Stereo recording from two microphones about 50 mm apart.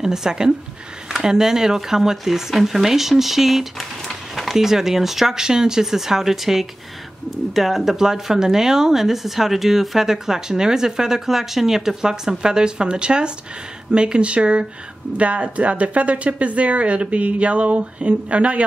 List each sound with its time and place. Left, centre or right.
0.0 s speech: centre; by 18.6 s right